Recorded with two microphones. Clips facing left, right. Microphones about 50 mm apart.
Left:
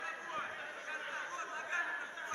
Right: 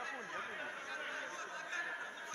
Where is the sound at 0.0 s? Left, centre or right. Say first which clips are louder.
Left 1 dB; centre.